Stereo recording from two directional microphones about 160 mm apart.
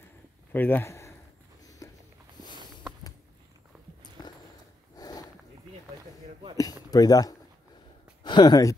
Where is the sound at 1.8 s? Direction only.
20° left (ahead or behind).